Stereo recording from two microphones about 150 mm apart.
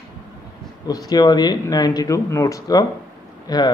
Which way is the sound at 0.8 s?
25° left (ahead or behind).